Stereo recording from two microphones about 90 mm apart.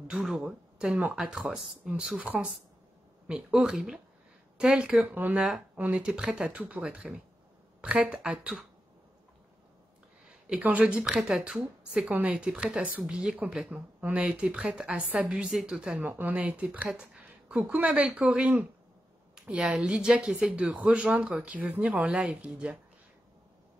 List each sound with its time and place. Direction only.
0.5 s speech: 10° right (ahead or behind)
10.2 s speech: 10° right (ahead or behind)
16.0 s speech: 20° right (ahead or behind)
19.3 s a sound: 15° right (ahead or behind)
19.6 s speech: 5° right (ahead or behind)